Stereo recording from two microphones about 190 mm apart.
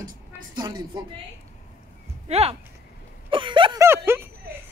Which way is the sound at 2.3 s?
30° right (ahead or behind).